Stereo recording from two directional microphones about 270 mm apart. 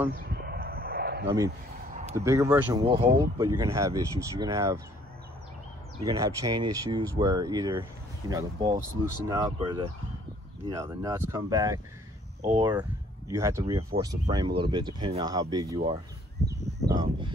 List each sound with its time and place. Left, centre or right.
0.1 s a sound: right
2.1 s speech: centre
6.0 s speech: centre